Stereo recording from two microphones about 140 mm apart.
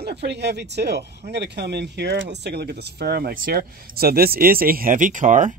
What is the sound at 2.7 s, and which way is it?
Speech, 90° right.